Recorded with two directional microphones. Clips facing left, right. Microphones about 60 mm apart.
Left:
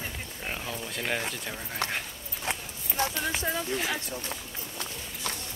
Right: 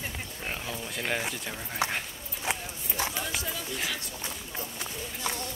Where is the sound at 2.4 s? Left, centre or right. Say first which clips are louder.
Right 1 dB; centre.